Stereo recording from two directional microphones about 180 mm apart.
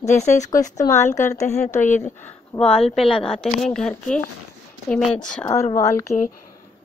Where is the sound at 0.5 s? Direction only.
20° left (ahead or behind).